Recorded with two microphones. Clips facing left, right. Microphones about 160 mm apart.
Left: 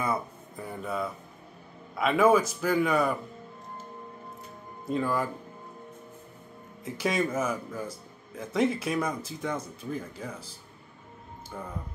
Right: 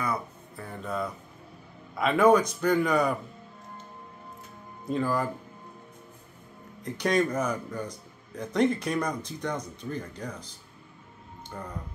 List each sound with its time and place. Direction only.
0.0 s a sound: 25° left (ahead or behind)
0.7 s a man's voice: 5° left (ahead or behind)
4.8 s a man's voice: centre (ahead or behind)
6.8 s a man's voice: 5° left (ahead or behind)